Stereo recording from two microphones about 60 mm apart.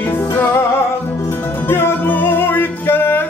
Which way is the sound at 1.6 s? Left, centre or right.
Left.